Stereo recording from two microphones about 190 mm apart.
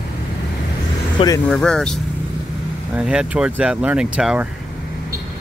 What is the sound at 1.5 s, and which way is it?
Speech, 5° left (ahead or behind).